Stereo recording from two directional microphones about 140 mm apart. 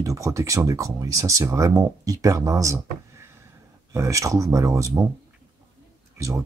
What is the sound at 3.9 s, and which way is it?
Speech, 20° right (ahead or behind).